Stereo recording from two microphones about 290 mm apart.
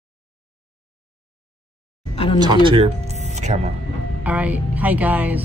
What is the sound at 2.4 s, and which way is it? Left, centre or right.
Speech, centre.